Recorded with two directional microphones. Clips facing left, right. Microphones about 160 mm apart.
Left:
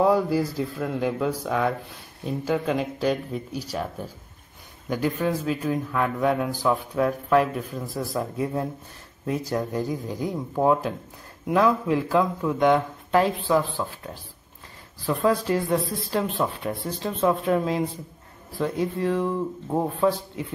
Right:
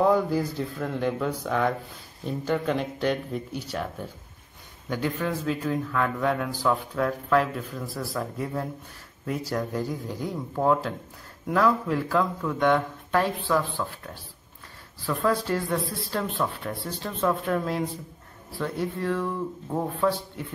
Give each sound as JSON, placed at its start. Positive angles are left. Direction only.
{"t": 0.0, "sound": "a man's voice", "side_deg": 10}